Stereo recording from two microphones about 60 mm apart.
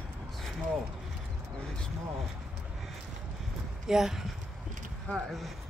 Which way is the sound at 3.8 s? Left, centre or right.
Centre.